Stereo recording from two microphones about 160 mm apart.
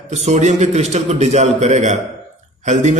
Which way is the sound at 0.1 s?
45° right (ahead or behind).